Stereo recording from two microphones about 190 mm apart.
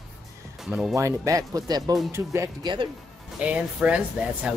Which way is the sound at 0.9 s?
15° right (ahead or behind).